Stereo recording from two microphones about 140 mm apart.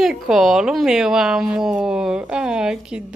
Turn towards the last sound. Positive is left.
turn(degrees=-5)  # may be behind; listen again after turning